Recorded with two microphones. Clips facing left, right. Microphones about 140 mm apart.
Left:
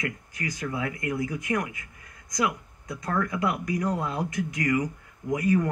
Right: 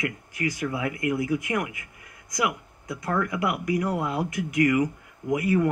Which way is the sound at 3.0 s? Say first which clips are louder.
Right 1 dB; 15° right (ahead or behind).